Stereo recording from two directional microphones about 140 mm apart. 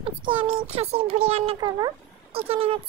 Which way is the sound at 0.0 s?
40° right (ahead or behind).